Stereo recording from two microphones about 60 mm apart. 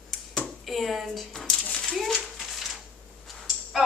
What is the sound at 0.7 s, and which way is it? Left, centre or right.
Speech, centre.